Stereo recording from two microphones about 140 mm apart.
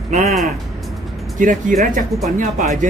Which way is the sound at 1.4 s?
70° right (ahead or behind).